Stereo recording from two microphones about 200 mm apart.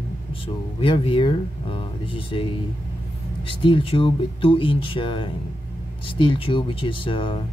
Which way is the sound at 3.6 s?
25° left (ahead or behind).